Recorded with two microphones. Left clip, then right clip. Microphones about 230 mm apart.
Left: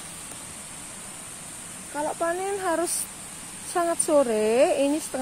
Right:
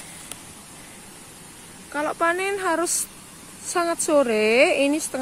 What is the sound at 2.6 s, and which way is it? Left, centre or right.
Speech, centre.